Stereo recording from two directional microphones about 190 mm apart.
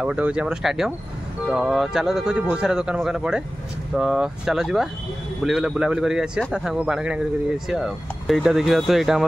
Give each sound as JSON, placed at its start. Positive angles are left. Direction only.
{"t": 0.0, "sound": "a man's voice", "side_deg": -5}